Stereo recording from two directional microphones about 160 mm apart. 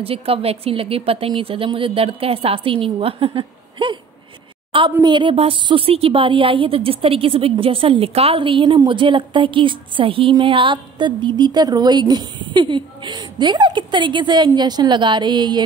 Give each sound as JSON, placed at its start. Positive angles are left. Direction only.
{"t": 0.0, "sound": "a woman's voice", "side_deg": -35}
{"t": 5.0, "sound": "a woman's voice", "side_deg": -30}